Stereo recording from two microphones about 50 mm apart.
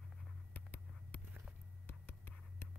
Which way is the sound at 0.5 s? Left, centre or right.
Left.